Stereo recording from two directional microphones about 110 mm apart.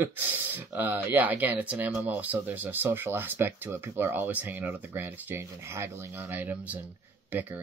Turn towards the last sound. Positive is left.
turn(degrees=-15)  # may be behind; listen again after turning